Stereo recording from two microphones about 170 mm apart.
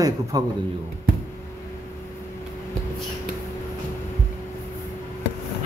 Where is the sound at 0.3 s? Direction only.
20° right (ahead or behind).